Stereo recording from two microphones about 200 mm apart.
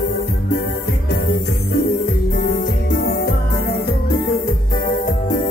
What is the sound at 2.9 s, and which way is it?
Music, 55° left (ahead or behind).